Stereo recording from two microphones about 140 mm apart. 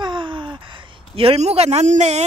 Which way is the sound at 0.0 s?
35° right (ahead or behind).